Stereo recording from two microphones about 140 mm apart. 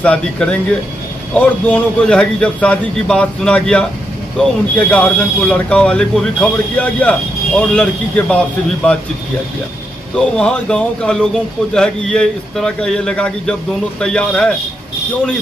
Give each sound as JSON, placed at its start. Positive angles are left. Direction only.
{"t": 0.0, "sound": "speech", "side_deg": 10}
{"t": 10.1, "sound": "a man's voice", "side_deg": 5}